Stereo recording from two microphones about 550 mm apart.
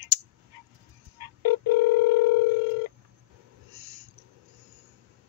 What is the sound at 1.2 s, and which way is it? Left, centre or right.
Telephone dialing, right.